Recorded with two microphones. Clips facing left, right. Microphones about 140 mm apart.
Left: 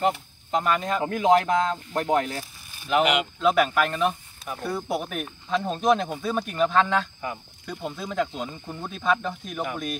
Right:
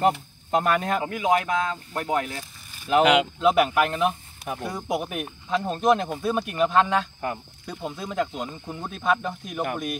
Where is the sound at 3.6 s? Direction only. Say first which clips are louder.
Right 1 dB; 15° right (ahead or behind).